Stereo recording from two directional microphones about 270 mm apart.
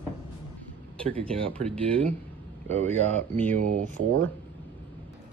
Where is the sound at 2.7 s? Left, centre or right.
Right.